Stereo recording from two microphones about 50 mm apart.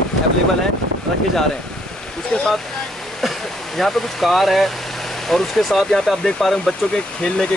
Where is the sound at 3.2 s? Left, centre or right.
Centre.